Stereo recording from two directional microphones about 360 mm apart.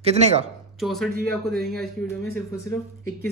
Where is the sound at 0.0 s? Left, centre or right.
Centre.